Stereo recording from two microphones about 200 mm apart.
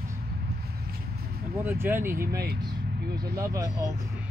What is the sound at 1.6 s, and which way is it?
Speech, 10° right (ahead or behind).